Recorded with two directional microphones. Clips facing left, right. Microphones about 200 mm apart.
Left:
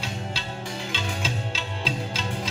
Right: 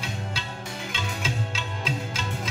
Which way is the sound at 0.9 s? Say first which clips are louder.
Even; 30° left (ahead or behind).